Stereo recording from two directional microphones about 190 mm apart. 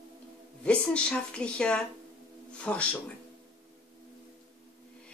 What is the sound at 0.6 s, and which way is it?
Speech, 5° left (ahead or behind).